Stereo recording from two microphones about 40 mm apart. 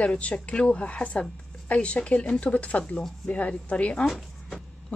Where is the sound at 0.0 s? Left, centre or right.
Left.